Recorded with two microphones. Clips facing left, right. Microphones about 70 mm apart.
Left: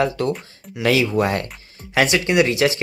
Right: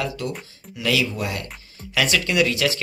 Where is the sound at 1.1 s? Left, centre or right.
Left.